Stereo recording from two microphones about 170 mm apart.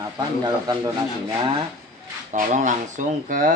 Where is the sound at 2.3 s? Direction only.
50° right (ahead or behind).